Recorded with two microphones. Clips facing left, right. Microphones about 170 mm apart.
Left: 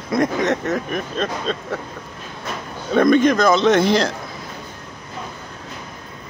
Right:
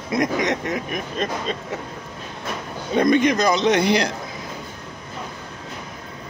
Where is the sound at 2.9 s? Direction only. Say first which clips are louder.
Left 3 dB; 20° right (ahead or behind).